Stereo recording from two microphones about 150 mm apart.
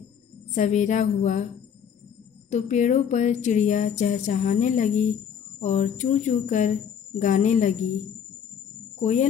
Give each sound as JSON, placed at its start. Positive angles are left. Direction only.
{"t": 0.6, "sound": "speech", "side_deg": 55}
{"t": 2.5, "sound": "speech", "side_deg": 50}
{"t": 9.0, "sound": "speech", "side_deg": 55}